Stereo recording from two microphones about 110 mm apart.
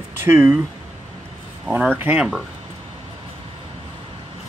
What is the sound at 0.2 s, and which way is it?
Speech, 20° right (ahead or behind).